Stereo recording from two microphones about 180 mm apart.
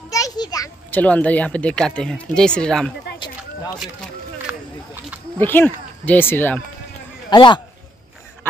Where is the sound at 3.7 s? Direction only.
5° left (ahead or behind).